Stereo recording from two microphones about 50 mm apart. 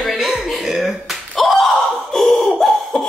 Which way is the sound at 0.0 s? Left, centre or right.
Centre.